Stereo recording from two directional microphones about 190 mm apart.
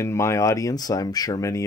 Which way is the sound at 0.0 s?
15° left (ahead or behind).